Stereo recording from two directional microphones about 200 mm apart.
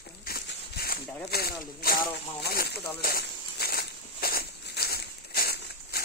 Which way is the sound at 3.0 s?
50° left (ahead or behind).